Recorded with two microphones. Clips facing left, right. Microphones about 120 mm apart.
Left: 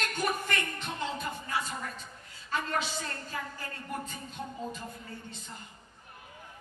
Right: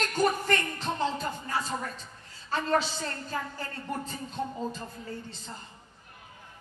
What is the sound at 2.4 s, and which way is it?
A woman's voice, 30° right (ahead or behind).